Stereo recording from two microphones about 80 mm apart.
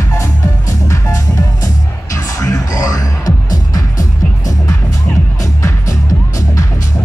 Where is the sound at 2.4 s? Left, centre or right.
Left.